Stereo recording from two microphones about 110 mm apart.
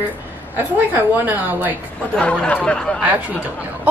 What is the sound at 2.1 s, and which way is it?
Speech, 10° left (ahead or behind).